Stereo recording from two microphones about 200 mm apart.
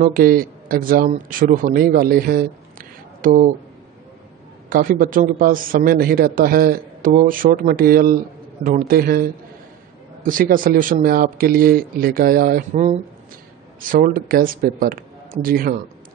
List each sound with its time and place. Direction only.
0.0 s a man's voice: 45° right (ahead or behind)
4.6 s a man's voice: 45° right (ahead or behind)
13.7 s speech: 45° right (ahead or behind)